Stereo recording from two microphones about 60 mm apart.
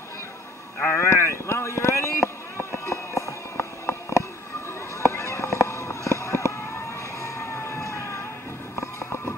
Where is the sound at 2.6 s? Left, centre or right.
Left.